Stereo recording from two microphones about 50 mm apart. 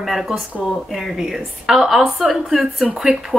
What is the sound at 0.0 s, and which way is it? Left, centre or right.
A woman's voice, centre.